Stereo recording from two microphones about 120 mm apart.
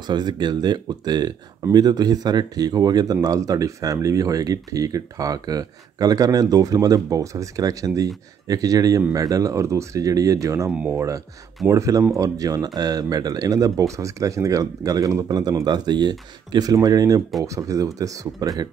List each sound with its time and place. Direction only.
0.0 s speech: 35° right (ahead or behind)
10.7 s speech: 10° right (ahead or behind)
11.0 s speech: 25° right (ahead or behind)